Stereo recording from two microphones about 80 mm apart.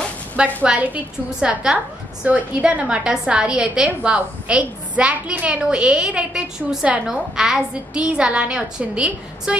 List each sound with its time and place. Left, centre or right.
0.7 s a woman's voice: centre